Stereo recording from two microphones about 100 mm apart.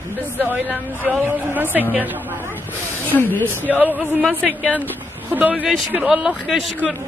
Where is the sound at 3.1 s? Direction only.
20° left (ahead or behind).